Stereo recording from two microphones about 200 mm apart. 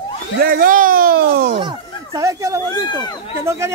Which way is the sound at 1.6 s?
20° right (ahead or behind).